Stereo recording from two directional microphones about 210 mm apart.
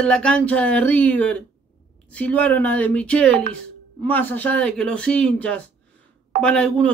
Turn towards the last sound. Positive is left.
turn(degrees=5)  # may be behind; listen again after turning